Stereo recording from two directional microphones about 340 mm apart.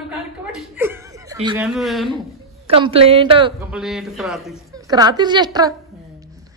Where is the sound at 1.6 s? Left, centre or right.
Centre.